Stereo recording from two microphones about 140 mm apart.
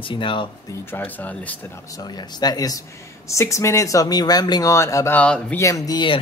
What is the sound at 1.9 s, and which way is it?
Speech, 30° left (ahead or behind).